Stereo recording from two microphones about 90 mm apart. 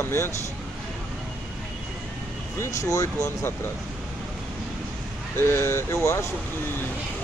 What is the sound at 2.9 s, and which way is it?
Speech, 35° left (ahead or behind).